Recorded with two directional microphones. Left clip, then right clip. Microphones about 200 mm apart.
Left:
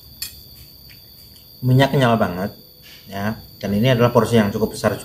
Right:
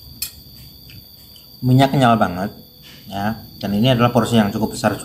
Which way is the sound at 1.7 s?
15° left (ahead or behind).